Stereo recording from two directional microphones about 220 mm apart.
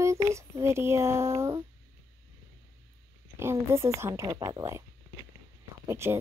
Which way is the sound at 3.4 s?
10° right (ahead or behind).